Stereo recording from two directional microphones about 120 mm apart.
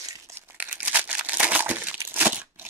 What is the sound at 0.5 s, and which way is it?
Crumpling, 10° right (ahead or behind).